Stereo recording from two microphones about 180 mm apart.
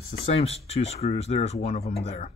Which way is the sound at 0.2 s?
35° left (ahead or behind).